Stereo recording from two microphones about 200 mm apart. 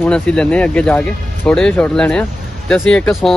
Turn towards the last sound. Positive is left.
turn(degrees=5)  # may be behind; listen again after turning